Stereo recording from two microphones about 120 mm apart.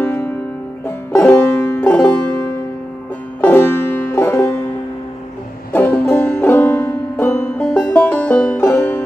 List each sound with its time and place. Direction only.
0.0 s music: 15° left (ahead or behind)
3.3 s music: 15° left (ahead or behind)
5.7 s music: 15° left (ahead or behind)
7.5 s banjo: 10° left (ahead or behind)
8.7 s music: 20° left (ahead or behind)